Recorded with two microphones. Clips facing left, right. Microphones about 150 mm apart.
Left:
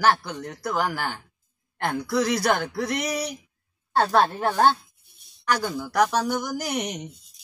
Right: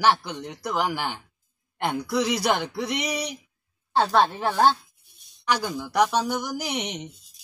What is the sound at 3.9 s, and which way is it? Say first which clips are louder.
Speech: even; centre (ahead or behind).